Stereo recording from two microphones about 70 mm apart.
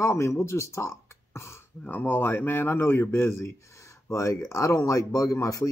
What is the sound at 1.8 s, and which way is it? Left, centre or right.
Speech, left.